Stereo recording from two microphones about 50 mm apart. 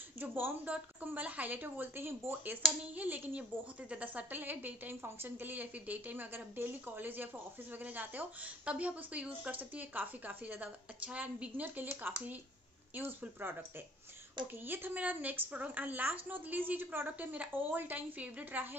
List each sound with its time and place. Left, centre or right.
0.2 s speech: right
0.7 s a woman's voice: right
2.8 s a woman's voice: right
13.4 s speech: right
14.7 s a woman's voice: right